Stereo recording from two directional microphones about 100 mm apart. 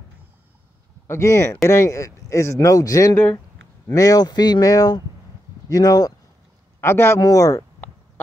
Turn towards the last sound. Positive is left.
turn(degrees=35)  # may be behind; listen again after turning